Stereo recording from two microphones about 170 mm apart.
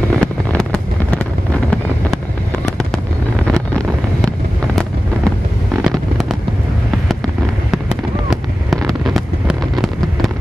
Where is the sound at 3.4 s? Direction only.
5° left (ahead or behind).